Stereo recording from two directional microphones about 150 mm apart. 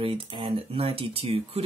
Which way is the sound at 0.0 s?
40° right (ahead or behind).